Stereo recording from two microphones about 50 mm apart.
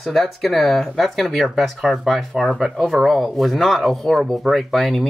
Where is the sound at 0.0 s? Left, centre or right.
Centre.